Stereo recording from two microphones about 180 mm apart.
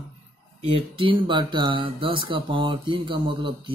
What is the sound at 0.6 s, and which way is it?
Speech, 30° right (ahead or behind).